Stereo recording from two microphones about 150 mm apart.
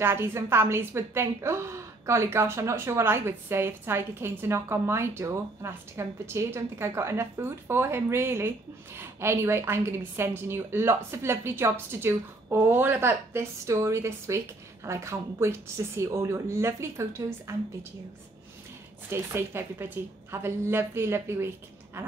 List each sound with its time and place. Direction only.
0.0 s a woman's voice: 15° right (ahead or behind)
19.0 s a woman's voice: 15° right (ahead or behind)